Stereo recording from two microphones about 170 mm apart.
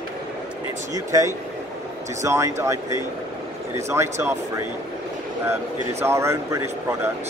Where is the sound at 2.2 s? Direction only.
15° right (ahead or behind).